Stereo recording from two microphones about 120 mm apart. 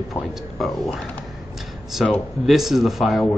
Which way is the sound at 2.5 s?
Centre (ahead or behind).